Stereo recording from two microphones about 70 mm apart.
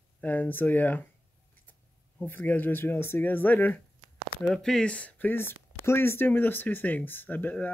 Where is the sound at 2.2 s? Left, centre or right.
Left.